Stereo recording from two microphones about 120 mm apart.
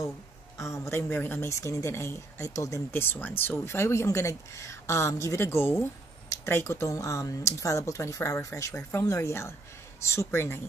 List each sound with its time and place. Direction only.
0.6 s speech: 25° left (ahead or behind)